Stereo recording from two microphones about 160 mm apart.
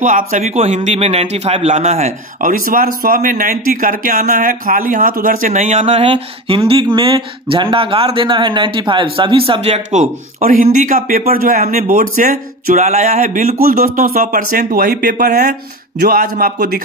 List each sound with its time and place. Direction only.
0.0 s a man's voice: 55° right (ahead or behind); by 16.8 s 70° right (ahead or behind)